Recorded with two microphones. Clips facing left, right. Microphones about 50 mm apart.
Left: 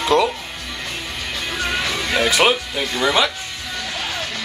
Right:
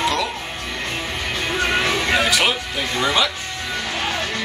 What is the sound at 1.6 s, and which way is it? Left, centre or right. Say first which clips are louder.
Music: right 3 dB; right.